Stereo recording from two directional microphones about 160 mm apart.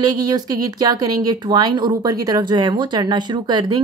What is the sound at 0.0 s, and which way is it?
Speech, 25° right (ahead or behind).